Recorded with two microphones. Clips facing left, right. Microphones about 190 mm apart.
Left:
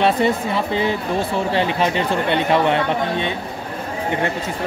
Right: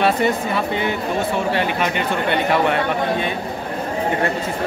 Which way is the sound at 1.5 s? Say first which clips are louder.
Left 1 dB; 30° left (ahead or behind).